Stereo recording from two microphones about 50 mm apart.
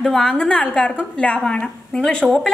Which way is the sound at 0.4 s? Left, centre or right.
Left.